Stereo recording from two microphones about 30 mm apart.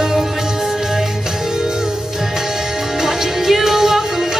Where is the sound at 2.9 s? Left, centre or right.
Centre.